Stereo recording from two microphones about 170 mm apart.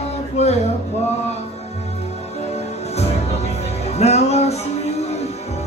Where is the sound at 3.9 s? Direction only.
40° left (ahead or behind).